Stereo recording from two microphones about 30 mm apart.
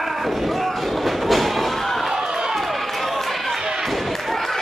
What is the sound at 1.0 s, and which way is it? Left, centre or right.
Train, centre.